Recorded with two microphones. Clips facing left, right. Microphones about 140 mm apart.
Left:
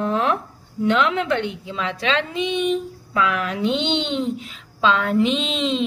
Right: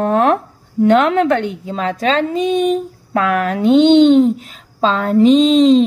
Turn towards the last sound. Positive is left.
turn(degrees=-40)  # may be behind; listen again after turning